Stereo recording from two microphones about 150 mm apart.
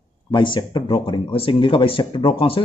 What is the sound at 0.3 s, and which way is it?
Speech, 30° left (ahead or behind).